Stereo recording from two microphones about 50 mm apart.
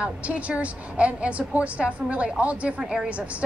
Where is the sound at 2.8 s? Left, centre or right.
Centre.